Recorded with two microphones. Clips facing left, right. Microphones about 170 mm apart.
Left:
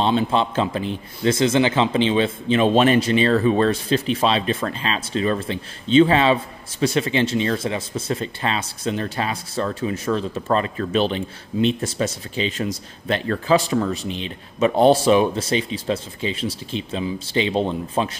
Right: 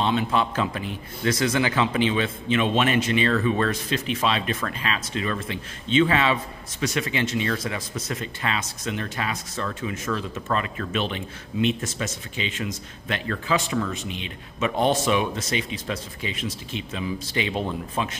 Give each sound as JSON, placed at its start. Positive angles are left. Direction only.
{"t": 0.0, "sound": "a man's voice", "side_deg": 30}